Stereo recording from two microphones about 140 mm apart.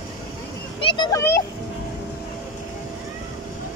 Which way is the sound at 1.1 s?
20° left (ahead or behind).